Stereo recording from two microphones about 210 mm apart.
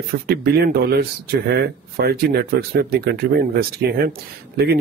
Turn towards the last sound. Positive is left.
turn(degrees=-45)  # may be behind; listen again after turning